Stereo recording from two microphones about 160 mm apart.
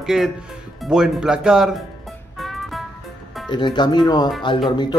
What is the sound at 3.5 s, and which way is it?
Speech, 30° left (ahead or behind).